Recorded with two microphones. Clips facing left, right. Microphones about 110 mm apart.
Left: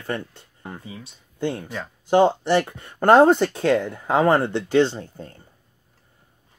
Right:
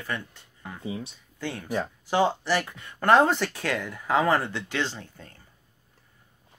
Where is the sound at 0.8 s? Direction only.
25° right (ahead or behind).